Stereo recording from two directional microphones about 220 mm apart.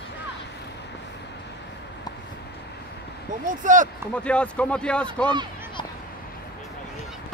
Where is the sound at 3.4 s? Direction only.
35° right (ahead or behind).